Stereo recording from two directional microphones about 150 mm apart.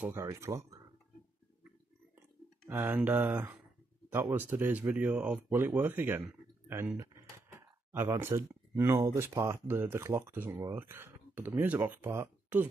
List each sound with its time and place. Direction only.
0.1 s speech: 20° right (ahead or behind)
2.7 s speech: 15° right (ahead or behind)